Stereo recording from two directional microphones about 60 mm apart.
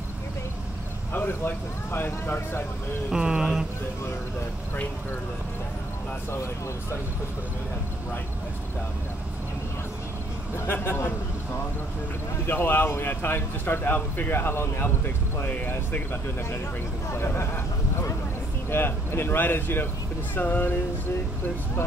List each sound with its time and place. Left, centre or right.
1.1 s speech: left
3.1 s speech: centre
10.8 s speech: left
12.4 s speech: left
18.7 s speech: left